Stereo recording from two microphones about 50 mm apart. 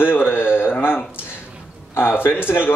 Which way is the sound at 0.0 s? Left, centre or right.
Left.